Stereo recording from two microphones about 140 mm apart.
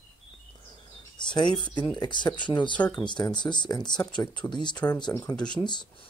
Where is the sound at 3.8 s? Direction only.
5° left (ahead or behind).